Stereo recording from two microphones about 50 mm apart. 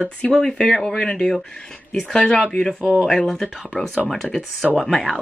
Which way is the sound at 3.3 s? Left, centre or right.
Centre.